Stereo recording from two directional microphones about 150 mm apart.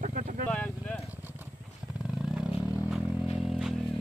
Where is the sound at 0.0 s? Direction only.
60° right (ahead or behind).